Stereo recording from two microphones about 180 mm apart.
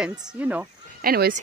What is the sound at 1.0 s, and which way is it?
Speech, 55° right (ahead or behind).